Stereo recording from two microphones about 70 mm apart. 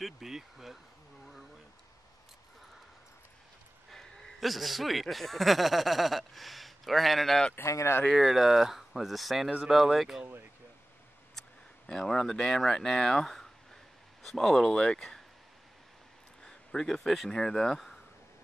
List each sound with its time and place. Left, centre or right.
0.0 s speech: centre
3.9 s a man's voice: centre
7.6 s speech: left
8.1 s speech: centre
11.3 s speech: centre
16.4 s speech: centre